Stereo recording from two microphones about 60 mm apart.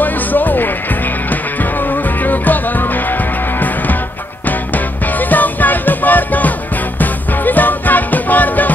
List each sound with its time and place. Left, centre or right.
0.0 s music: left